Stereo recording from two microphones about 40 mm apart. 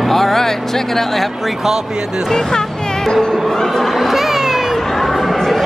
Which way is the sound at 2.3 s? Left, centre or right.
Centre.